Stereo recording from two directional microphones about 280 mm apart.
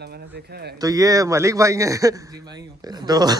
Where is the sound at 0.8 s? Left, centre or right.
Centre.